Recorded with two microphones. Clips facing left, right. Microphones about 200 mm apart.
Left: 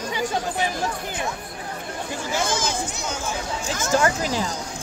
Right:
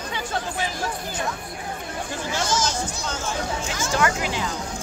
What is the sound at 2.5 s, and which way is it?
Speech, 55° left (ahead or behind).